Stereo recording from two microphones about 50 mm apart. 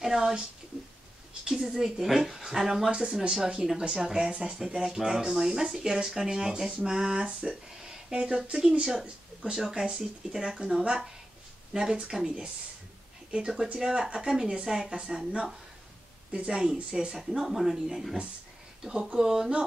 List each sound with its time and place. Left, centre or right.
0.0 s speech: centre
1.4 s speech: centre
13.3 s speech: centre